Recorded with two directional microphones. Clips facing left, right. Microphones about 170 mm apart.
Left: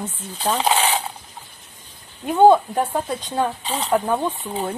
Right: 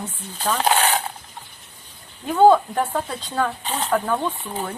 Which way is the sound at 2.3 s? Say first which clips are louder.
Left 1 dB; 20° left (ahead or behind).